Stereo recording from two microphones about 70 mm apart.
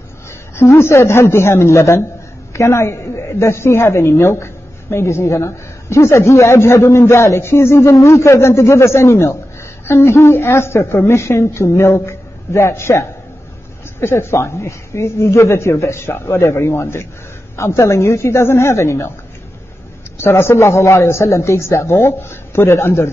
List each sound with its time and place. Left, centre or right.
0.6 s a woman's voice: left
20.2 s a woman's voice: left